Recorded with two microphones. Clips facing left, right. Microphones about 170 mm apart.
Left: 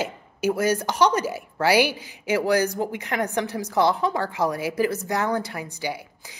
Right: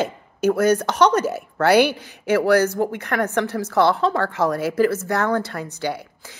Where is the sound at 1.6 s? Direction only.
60° right (ahead or behind).